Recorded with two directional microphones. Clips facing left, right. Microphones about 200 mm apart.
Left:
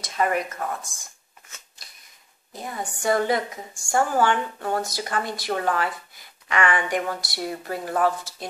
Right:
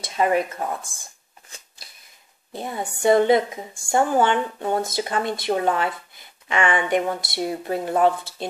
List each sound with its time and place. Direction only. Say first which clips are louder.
0.0 s speech: right 4 dB; 25° right (ahead or behind)
2.5 s speech: right 3 dB; 25° right (ahead or behind)